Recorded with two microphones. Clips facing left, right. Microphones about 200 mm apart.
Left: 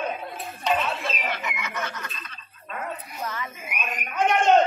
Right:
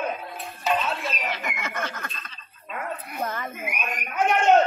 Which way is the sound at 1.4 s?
50° right (ahead or behind).